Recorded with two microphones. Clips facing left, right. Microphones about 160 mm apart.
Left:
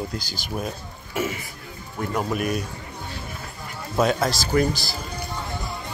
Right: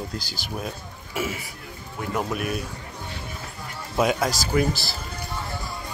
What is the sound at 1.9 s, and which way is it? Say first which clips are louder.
Speech: left 2 dB; centre (ahead or behind).